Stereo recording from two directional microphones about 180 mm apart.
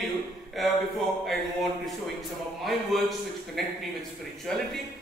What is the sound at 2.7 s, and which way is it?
A man's voice, centre (ahead or behind).